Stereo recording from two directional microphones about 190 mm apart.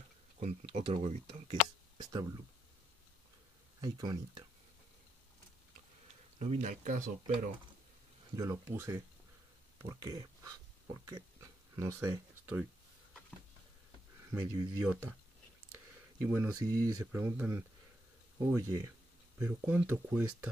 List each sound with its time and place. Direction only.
0.4 s speech: 35° right (ahead or behind)
1.5 s a sound: 20° right (ahead or behind)
3.8 s speech: 20° right (ahead or behind)
6.4 s speech: 35° right (ahead or behind)
8.4 s speech: 15° right (ahead or behind)
14.3 s speech: 10° right (ahead or behind)
16.2 s speech: 10° right (ahead or behind)